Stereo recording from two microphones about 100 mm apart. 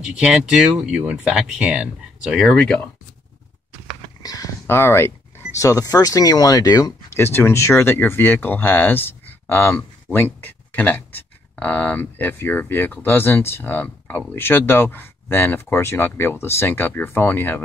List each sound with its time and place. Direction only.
0.0 s speech: 10° right (ahead or behind)
2.5 s speech: 10° left (ahead or behind)
4.2 s speech: 35° left (ahead or behind)
4.6 s speech: 25° left (ahead or behind); by 6.9 s 40° left (ahead or behind)
7.1 s speech: 25° left (ahead or behind)